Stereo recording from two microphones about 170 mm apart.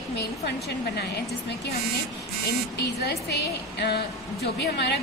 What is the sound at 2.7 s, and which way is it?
A woman's voice, 75° left (ahead or behind).